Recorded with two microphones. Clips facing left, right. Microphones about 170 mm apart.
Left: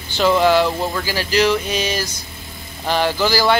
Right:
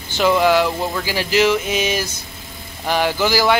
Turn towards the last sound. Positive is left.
turn(degrees=-10)  # may be behind; listen again after turning